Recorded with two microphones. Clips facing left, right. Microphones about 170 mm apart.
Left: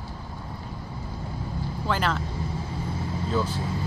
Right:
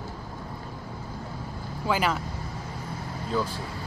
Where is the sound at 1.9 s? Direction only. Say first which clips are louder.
Right 1 dB; 10° right (ahead or behind).